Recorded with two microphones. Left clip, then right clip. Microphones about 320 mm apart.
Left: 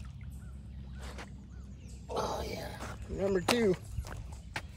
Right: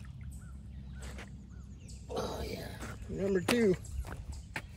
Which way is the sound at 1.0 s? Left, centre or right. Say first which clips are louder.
Left 2 dB; centre.